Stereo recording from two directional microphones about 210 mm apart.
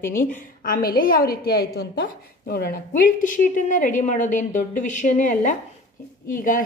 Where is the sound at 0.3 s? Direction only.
45° left (ahead or behind).